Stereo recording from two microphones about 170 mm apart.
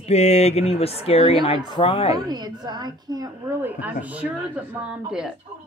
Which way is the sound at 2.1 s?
25° right (ahead or behind).